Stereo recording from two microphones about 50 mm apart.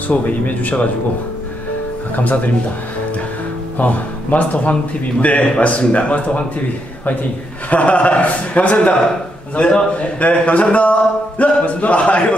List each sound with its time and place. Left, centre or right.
0.1 s speech: left
2.1 s speech: left
3.7 s speech: left
7.7 s speech: left